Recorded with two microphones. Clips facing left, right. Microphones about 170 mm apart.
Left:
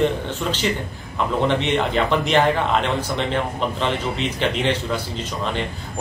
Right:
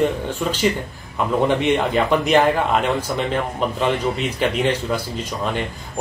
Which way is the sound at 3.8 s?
5° right (ahead or behind).